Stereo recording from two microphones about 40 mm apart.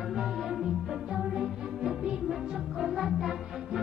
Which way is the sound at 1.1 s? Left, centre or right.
Centre.